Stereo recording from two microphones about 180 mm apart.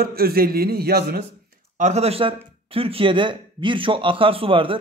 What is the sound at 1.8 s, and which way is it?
A man's voice, 35° right (ahead or behind).